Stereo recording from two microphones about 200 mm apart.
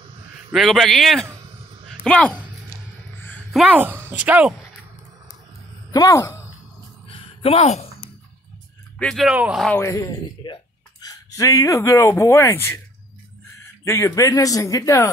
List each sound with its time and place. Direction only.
0.5 s speech: centre (ahead or behind)
1.9 s a sound: 5° left (ahead or behind)
3.5 s a woman's voice: 10° right (ahead or behind)
5.9 s speech: 15° left (ahead or behind)
7.1 s a sound: 30° left (ahead or behind)
8.9 s speech: centre (ahead or behind)
9.7 s speech: 10° left (ahead or behind)
13.8 s a man's voice: 15° left (ahead or behind)